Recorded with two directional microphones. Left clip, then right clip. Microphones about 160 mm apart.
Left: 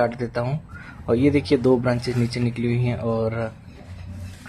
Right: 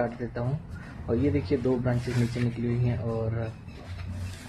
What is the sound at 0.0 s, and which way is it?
Speech, 20° left (ahead or behind).